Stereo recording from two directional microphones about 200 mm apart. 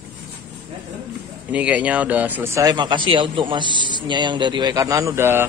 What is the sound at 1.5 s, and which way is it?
Speech, 5° right (ahead or behind).